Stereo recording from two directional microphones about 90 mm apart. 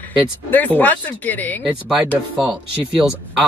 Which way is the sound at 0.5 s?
20° left (ahead or behind).